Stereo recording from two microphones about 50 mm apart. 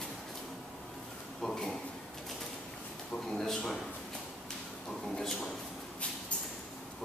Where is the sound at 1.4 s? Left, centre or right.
Centre.